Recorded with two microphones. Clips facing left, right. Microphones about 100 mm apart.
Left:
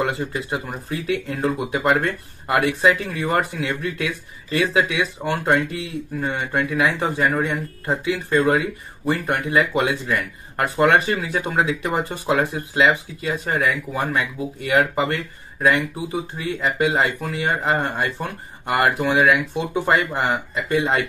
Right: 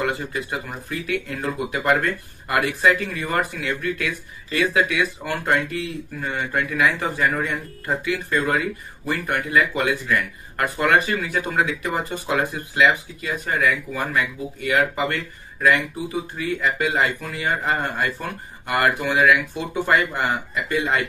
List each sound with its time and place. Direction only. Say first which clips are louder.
0.5 s speech: left 3 dB; 30° left (ahead or behind)